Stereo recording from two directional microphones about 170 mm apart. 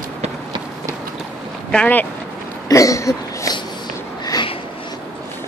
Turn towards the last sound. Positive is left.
turn(degrees=25)  # may be behind; listen again after turning